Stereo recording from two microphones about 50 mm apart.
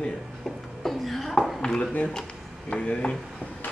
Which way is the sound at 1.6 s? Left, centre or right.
Centre.